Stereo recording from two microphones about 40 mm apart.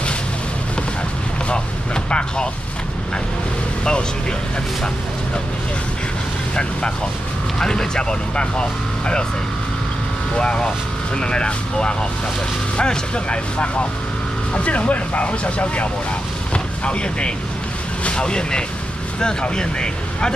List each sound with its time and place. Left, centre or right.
2.0 s vehicle: left
7.5 s speech: centre
10.3 s speech: left
16.5 s vehicle: left
18.0 s speech: left